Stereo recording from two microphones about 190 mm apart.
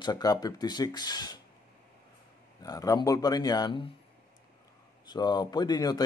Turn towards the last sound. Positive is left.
turn(degrees=20)  # may be behind; listen again after turning